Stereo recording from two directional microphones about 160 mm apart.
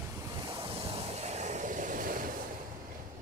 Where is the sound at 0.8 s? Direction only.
40° right (ahead or behind); by 2.2 s 60° right (ahead or behind).